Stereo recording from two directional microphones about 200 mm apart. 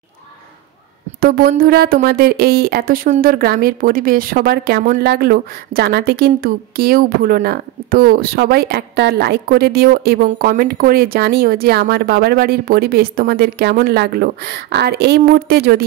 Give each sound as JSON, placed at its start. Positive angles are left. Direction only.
{"t": 1.2, "sound": "speech", "side_deg": -50}